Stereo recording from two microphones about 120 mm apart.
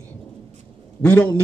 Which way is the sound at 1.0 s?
10° left (ahead or behind).